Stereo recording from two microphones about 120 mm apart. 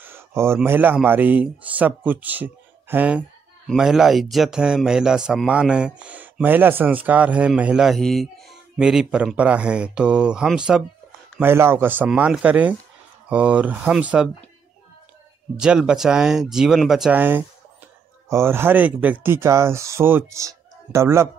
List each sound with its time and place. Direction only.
0.0 s a sound: 20° right (ahead or behind)
0.7 s a man's voice: 15° right (ahead or behind)
11.3 s a man's voice: 20° right (ahead or behind)
15.6 s speech: 5° right (ahead or behind)
17.1 s a man's voice: 15° right (ahead or behind)